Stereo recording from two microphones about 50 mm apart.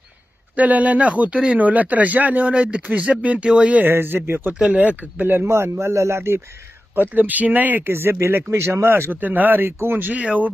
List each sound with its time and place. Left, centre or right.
0.6 s speech: right
3.8 s speech: right
4.6 s speech: right
5.4 s speech: right
7.0 s speech: right
7.9 s speech: right
9.1 s speech: right
9.7 s speech: right
10.1 s speech: right